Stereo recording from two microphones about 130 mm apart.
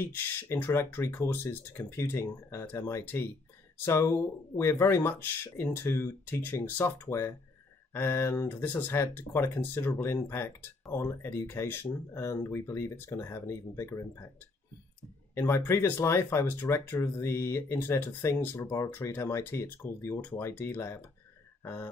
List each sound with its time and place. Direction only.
0.0 s speech: 20° left (ahead or behind)
15.3 s speech: 20° left (ahead or behind)